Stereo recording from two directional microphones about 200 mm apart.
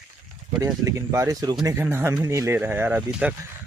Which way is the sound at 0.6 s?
15° right (ahead or behind).